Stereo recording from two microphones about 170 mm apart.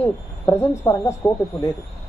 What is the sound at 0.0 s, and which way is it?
Speech, 15° left (ahead or behind).